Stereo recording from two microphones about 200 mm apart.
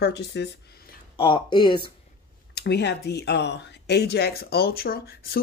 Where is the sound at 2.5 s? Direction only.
55° left (ahead or behind).